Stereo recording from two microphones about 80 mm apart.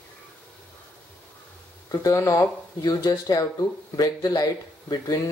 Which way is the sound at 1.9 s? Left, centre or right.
Left.